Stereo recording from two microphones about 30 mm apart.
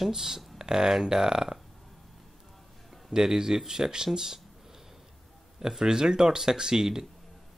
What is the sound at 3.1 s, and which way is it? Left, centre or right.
Speech, centre.